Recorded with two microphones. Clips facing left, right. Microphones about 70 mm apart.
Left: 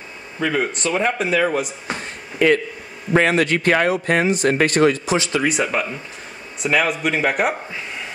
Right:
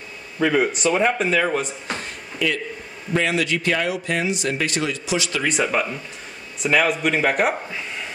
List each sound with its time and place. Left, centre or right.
0.4 s speech: centre
2.3 s speech: left
5.5 s speech: centre